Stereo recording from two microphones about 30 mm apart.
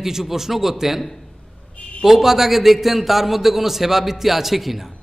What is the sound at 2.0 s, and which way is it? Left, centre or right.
A man's voice, centre.